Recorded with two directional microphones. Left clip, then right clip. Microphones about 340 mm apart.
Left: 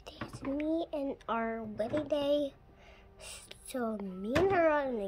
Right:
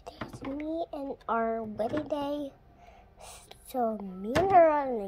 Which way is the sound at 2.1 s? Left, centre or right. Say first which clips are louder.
Left 2 dB; centre.